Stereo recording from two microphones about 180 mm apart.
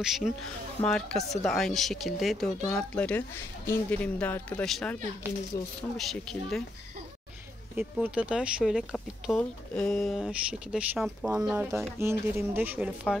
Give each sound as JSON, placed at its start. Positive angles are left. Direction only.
{"t": 0.0, "sound": "speech", "side_deg": 0}
{"t": 7.7, "sound": "speech", "side_deg": -10}